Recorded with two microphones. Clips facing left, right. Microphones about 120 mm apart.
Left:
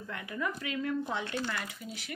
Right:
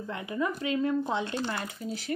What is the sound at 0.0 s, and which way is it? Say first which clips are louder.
Speech: right 5 dB; 25° right (ahead or behind).